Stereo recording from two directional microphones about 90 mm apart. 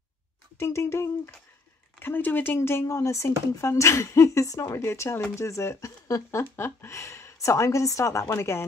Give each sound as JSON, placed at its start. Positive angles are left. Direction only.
{"t": 0.6, "sound": "speech", "side_deg": 30}
{"t": 6.5, "sound": "speech", "side_deg": 25}